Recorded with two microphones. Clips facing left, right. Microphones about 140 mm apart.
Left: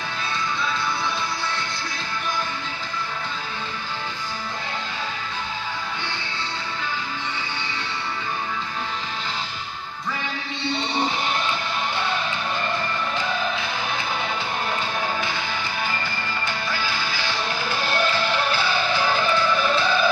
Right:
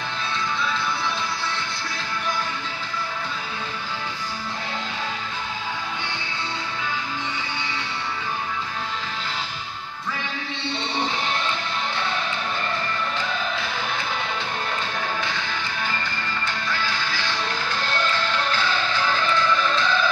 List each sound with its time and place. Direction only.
16.6 s music: 5° left (ahead or behind)